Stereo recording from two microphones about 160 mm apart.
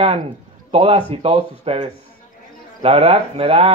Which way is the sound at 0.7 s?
40° right (ahead or behind).